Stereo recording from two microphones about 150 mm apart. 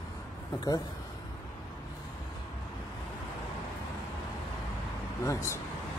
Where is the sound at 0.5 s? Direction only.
25° left (ahead or behind).